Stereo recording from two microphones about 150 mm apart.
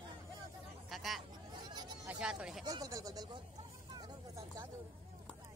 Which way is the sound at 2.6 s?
25° right (ahead or behind).